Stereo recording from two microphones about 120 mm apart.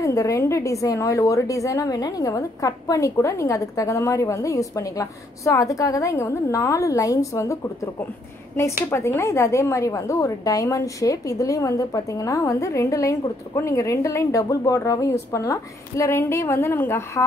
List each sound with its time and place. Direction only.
0.0 s a woman's voice: 25° left (ahead or behind)